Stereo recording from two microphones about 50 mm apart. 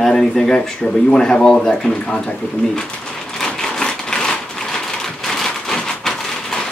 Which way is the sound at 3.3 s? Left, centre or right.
Centre.